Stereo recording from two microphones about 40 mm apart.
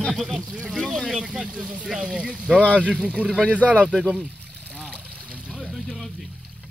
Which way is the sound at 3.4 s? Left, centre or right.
Left.